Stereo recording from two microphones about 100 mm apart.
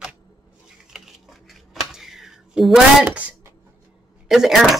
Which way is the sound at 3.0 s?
20° right (ahead or behind).